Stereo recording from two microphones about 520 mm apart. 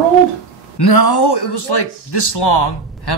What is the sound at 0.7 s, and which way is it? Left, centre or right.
Speech, left.